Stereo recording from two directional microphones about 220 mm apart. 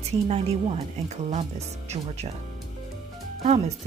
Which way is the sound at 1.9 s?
30° right (ahead or behind).